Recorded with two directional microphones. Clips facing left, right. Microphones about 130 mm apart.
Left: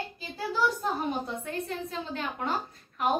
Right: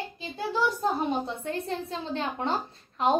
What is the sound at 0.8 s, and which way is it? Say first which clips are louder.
A woman's voice: right 3 dB; 25° right (ahead or behind).